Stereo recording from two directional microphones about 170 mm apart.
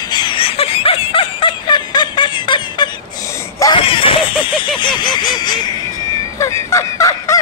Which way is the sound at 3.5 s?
25° left (ahead or behind).